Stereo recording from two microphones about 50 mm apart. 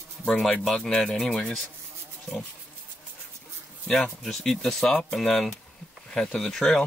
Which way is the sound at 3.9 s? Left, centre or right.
Centre.